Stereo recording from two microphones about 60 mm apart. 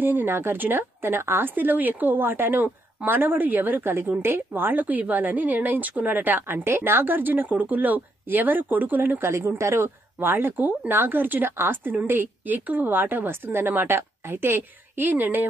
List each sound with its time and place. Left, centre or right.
0.0 s speech: right
9.3 s speech: right
10.1 s speech: right